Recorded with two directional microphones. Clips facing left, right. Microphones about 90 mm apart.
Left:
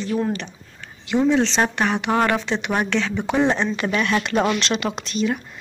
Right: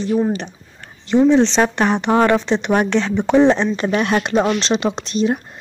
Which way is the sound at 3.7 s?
30° right (ahead or behind).